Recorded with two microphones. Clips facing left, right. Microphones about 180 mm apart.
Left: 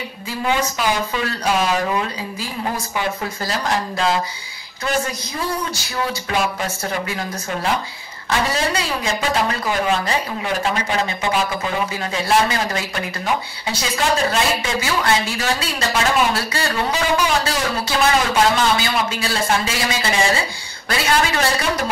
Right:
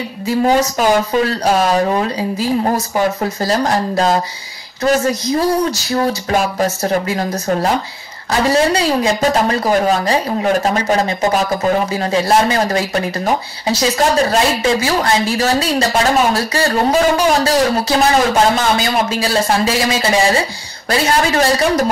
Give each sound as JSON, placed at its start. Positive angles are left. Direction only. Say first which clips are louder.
{"t": 0.4, "sound": "a woman's voice", "louder": "right 7 dB", "side_deg": -40}